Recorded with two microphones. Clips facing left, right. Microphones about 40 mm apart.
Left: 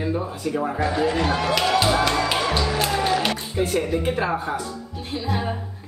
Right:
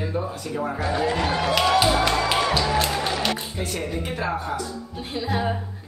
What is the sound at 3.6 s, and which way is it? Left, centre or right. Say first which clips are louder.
Speech: left 11 dB; centre.